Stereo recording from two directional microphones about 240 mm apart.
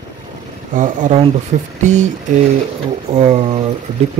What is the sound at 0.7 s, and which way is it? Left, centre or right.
Speech, right.